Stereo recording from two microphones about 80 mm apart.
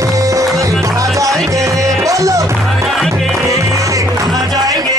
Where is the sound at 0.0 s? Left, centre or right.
Right.